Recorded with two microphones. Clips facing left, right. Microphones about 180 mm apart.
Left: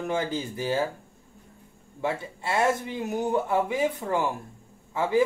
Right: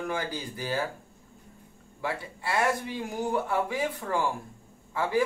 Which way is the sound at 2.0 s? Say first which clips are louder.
Left 3 dB; 25° left (ahead or behind).